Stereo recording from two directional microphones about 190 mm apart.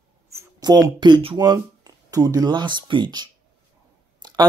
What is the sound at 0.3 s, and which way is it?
Speech, 20° right (ahead or behind).